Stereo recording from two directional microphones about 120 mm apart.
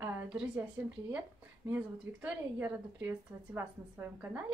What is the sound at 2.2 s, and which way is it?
A woman's voice, 15° right (ahead or behind).